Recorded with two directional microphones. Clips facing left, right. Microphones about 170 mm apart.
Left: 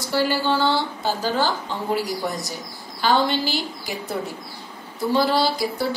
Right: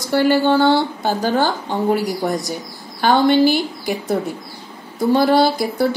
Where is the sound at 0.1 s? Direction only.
55° right (ahead or behind).